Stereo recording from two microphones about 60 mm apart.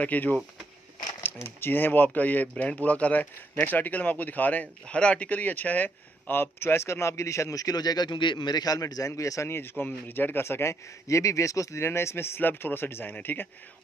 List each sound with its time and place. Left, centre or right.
0.0 s speech: left
1.4 s speech: left
6.3 s a man's voice: left
7.5 s speech: left
9.5 s a man's voice: left
12.4 s speech: left